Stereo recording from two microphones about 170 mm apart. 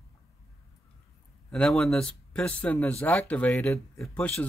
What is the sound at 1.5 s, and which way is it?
Speech, 5° left (ahead or behind).